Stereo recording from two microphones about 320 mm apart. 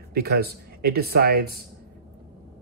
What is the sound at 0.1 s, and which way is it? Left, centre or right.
Speech, right.